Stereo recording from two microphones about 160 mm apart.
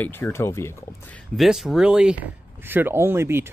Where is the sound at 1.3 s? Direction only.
Centre (ahead or behind).